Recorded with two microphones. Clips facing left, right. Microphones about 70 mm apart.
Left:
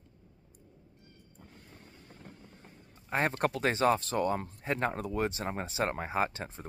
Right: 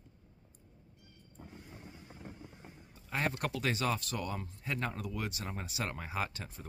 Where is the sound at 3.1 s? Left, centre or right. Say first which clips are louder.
Left 5 dB; left.